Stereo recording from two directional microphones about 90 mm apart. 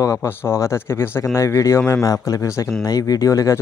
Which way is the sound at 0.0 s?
35° left (ahead or behind).